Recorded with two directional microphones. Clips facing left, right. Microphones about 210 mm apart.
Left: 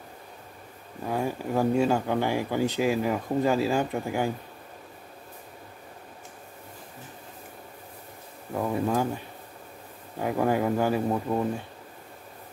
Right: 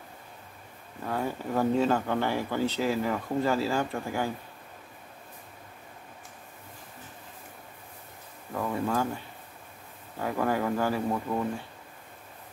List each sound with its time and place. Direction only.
1.0 s speech: 15° left (ahead or behind)
8.5 s speech: 20° left (ahead or behind)